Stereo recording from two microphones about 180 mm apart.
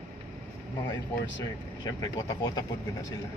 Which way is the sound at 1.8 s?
25° left (ahead or behind).